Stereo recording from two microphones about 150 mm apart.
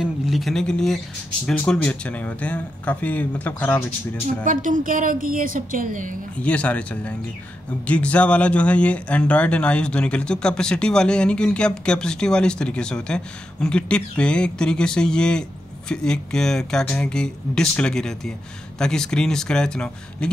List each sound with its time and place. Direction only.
0.0 s speech: centre (ahead or behind)
4.5 s a woman's voice: 60° right (ahead or behind)
6.4 s speech: 10° left (ahead or behind)